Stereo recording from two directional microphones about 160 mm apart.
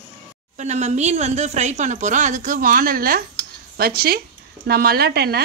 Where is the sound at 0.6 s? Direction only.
45° right (ahead or behind).